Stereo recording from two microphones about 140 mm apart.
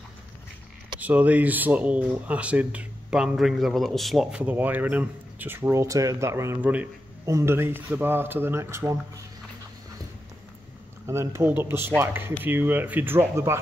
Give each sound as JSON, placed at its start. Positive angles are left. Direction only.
{"t": 0.9, "sound": "speech", "side_deg": -10}
{"t": 11.1, "sound": "speech", "side_deg": -20}